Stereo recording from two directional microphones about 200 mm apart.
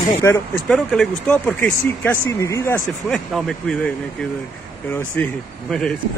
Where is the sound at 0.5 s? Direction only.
Centre (ahead or behind).